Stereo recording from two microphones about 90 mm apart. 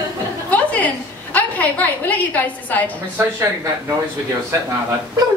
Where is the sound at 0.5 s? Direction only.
15° left (ahead or behind).